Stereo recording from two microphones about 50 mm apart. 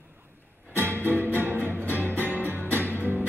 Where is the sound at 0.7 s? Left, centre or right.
Left.